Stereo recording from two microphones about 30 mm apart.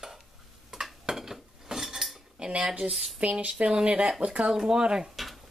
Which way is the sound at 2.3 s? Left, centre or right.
Right.